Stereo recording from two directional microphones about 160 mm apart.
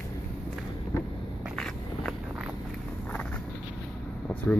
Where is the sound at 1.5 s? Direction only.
5° left (ahead or behind).